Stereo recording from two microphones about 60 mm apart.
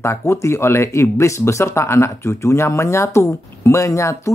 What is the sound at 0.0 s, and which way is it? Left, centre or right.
Speech, left.